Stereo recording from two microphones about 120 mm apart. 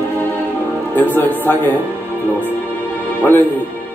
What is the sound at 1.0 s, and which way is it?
Speech, 15° left (ahead or behind).